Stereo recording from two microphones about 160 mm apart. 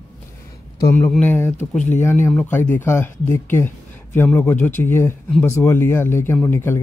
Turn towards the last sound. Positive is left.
turn(degrees=15)  # may be behind; listen again after turning